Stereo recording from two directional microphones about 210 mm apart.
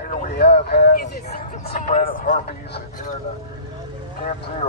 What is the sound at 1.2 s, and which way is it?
Speech, 30° left (ahead or behind).